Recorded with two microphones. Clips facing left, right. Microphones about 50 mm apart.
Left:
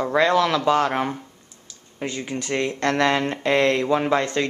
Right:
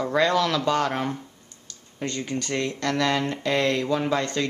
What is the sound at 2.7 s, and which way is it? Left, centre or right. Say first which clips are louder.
Speech: left 4 dB; left.